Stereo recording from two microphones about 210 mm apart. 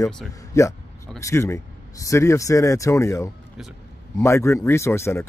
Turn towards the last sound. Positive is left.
turn(degrees=15)  # may be behind; listen again after turning